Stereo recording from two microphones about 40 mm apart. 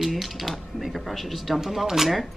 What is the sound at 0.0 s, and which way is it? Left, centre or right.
A woman's voice, centre.